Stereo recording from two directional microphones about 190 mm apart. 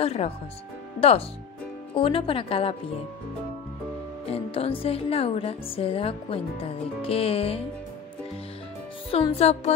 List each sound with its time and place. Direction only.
0.0 s music: 30° left (ahead or behind)
1.0 s speech: 30° left (ahead or behind)
4.3 s music: 30° left (ahead or behind)
9.1 s music: 35° left (ahead or behind)